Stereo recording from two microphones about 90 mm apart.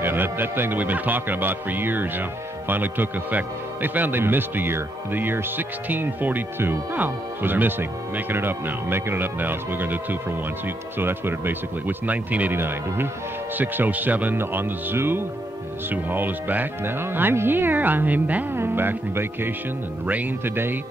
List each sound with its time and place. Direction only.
0.0 s speech: 25° right (ahead or behind)